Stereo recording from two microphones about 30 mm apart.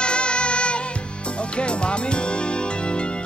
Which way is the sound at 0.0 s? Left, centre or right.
Left.